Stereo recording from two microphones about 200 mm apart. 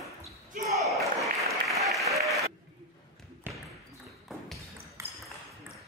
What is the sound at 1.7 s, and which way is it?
Applause, centre (ahead or behind).